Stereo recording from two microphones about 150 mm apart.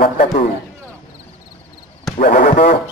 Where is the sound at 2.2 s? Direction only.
65° left (ahead or behind).